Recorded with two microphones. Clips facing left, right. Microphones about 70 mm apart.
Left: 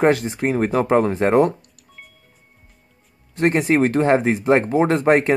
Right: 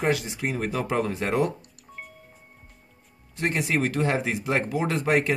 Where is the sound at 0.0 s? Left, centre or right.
Left.